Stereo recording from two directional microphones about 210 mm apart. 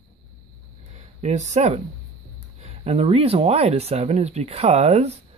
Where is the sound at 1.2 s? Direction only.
35° right (ahead or behind).